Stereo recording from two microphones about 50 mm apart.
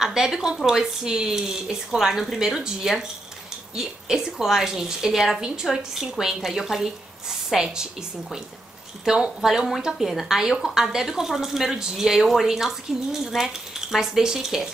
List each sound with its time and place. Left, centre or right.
0.0 s a woman's voice: centre